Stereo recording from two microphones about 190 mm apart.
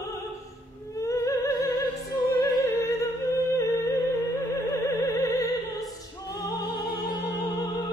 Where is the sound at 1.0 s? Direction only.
15° left (ahead or behind).